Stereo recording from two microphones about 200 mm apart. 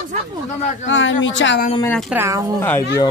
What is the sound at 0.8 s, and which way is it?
Speech, 70° left (ahead or behind).